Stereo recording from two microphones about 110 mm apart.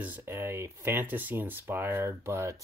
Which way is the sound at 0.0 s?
20° right (ahead or behind).